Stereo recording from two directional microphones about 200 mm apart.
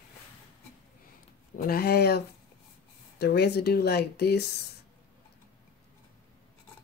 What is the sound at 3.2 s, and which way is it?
Speech, 55° left (ahead or behind).